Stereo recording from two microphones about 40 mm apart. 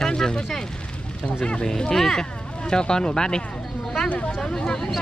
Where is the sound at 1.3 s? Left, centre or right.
Left.